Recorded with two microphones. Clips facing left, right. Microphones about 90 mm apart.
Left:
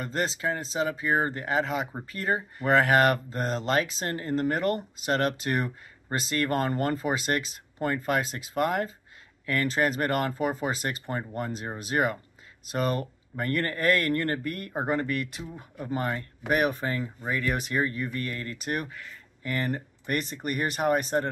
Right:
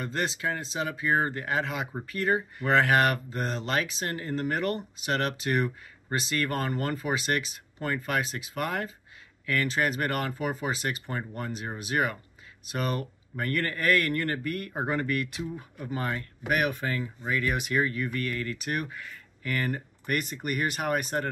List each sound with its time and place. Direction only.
0.0 s speech: 30° left (ahead or behind)